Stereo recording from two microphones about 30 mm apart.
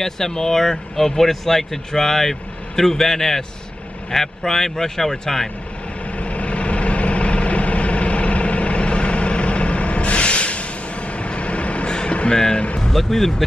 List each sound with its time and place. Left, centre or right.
0.0 s speech: centre
6.1 s vehicle: left
12.3 s speech: left
12.5 s vehicle: left
12.9 s speech: centre